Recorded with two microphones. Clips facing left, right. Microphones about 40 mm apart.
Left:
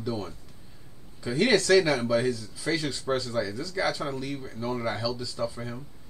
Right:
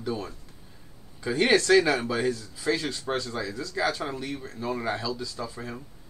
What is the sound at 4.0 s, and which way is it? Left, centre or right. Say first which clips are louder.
Speech: even; right.